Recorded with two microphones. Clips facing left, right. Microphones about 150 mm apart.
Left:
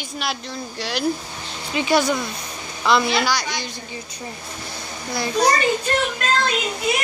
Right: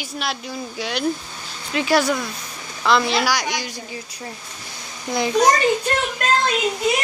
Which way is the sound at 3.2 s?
15° right (ahead or behind).